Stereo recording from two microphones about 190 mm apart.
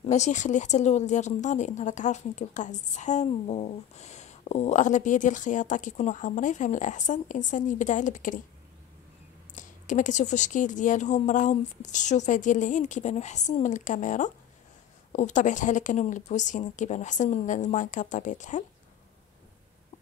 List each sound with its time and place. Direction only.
0.0 s speech: 35° left (ahead or behind)
9.6 s speech: 40° left (ahead or behind)